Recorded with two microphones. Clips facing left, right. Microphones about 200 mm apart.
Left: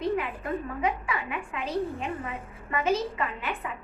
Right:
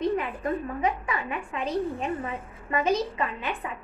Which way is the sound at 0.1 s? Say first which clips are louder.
Right 1 dB; 35° right (ahead or behind).